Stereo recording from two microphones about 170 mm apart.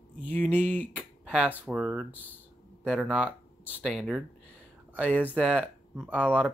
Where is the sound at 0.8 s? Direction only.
5° right (ahead or behind).